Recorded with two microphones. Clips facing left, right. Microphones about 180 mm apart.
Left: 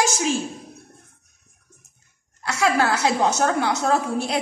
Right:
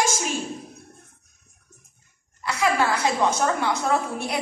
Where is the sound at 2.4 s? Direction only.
90° left.